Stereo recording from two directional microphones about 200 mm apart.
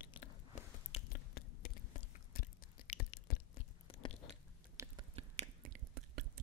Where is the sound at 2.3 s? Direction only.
50° left (ahead or behind).